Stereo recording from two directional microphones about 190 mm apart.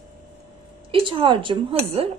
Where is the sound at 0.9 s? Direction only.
25° right (ahead or behind).